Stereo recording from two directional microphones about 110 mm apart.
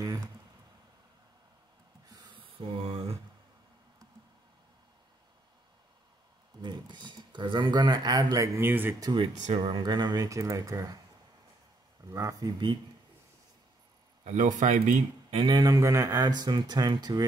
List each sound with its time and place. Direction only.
2.0 s a sound: 35° right (ahead or behind)
2.3 s a sound: 55° right (ahead or behind)
6.6 s speech: 45° right (ahead or behind)
8.5 s speech: 20° right (ahead or behind)
9.6 s speech: 45° right (ahead or behind)
12.1 s speech: 30° right (ahead or behind)
14.2 s speech: 90° right
15.4 s speech: 35° right (ahead or behind)